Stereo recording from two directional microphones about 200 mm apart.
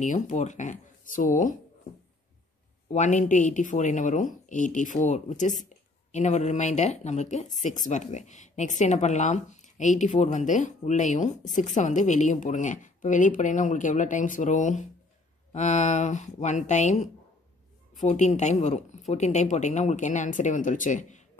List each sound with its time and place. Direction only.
0.0 s speech: 35° left (ahead or behind)
2.9 s speech: 35° left (ahead or behind)